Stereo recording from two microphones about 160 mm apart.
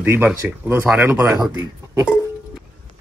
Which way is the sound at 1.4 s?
25° right (ahead or behind).